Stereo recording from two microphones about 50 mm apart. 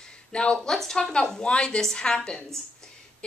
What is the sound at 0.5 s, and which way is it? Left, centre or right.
A woman's voice, centre.